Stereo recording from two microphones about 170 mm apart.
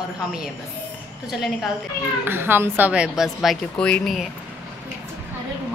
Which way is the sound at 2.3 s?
15° right (ahead or behind).